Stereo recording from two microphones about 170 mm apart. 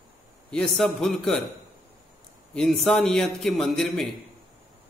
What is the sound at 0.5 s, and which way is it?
Mantra, 5° left (ahead or behind).